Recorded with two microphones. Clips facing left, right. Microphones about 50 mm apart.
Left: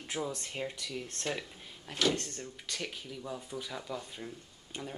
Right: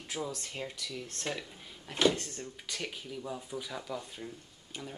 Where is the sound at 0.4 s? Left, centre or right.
Centre.